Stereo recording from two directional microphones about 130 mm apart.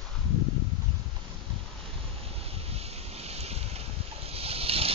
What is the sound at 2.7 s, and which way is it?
Wind, 50° right (ahead or behind).